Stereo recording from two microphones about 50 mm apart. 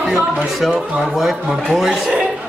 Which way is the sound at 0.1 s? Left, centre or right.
Centre.